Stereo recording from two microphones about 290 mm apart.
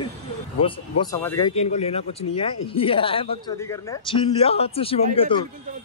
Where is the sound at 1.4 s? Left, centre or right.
Left.